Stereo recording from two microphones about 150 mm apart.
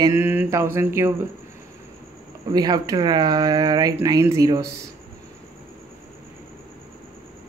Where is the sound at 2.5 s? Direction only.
25° right (ahead or behind).